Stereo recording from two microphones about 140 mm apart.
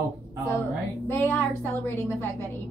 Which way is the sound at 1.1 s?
15° left (ahead or behind).